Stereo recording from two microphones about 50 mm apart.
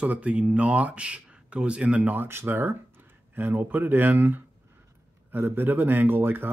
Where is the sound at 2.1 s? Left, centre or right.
Right.